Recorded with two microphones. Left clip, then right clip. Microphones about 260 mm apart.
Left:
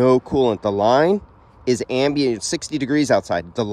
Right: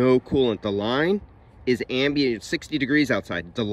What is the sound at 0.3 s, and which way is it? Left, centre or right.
Speech, centre.